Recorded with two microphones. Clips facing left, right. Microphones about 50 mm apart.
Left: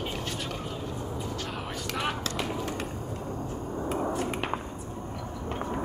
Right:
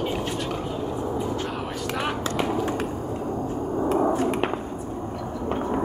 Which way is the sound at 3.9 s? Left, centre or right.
Right.